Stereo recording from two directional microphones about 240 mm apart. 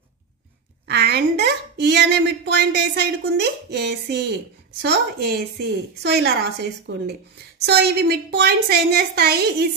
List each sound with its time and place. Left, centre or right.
0.8 s a woman's voice: right